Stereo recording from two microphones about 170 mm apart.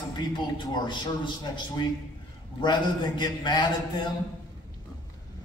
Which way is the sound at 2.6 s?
25° left (ahead or behind).